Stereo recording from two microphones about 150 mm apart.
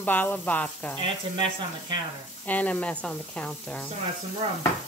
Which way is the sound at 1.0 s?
35° right (ahead or behind).